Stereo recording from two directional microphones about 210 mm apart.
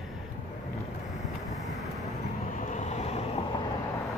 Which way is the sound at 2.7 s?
35° left (ahead or behind).